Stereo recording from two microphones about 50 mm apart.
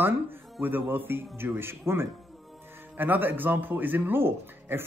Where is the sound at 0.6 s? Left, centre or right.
Right.